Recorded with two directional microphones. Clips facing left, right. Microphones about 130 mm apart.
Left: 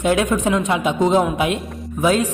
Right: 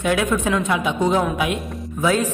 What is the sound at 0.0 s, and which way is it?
A woman's voice, 25° left (ahead or behind).